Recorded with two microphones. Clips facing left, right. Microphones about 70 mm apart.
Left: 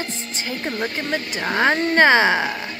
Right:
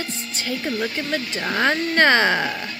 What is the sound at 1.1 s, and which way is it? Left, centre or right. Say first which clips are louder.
Speech: left 3 dB; left.